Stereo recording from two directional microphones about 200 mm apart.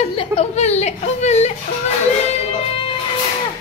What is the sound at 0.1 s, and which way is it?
Speech, 30° left (ahead or behind).